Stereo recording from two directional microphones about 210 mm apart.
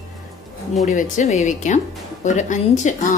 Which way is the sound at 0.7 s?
35° left (ahead or behind).